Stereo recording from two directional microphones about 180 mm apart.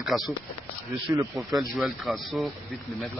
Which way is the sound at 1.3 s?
Centre (ahead or behind).